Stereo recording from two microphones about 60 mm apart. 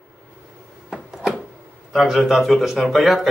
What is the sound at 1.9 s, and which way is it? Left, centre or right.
Speech, centre.